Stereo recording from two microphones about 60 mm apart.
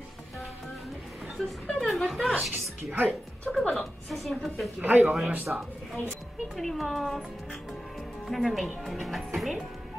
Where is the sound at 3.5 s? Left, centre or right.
Centre.